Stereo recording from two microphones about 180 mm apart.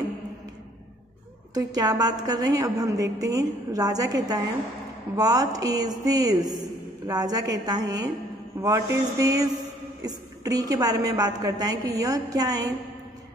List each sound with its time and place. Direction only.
1.5 s a woman's voice: 20° right (ahead or behind)
8.5 s a sound: 15° right (ahead or behind)
10.0 s a woman's voice: 20° right (ahead or behind)